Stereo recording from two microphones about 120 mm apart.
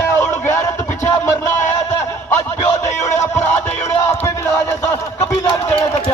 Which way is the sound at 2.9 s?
80° left.